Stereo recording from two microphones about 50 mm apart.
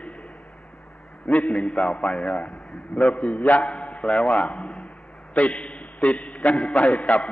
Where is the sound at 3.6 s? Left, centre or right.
Centre.